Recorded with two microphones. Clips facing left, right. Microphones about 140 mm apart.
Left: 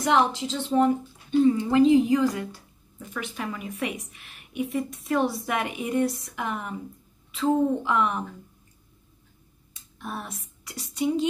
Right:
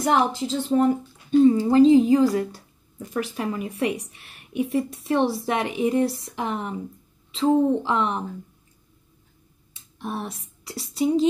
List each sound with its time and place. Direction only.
0.5 s a woman's voice: 45° right (ahead or behind); by 8.2 s 30° right (ahead or behind)
9.8 s speech: 30° right (ahead or behind)